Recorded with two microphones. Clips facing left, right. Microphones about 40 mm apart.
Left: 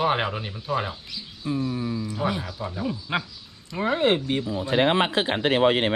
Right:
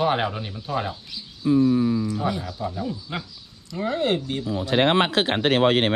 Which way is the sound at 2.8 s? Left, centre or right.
Left.